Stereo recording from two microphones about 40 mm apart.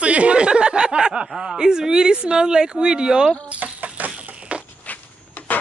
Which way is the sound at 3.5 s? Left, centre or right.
Right.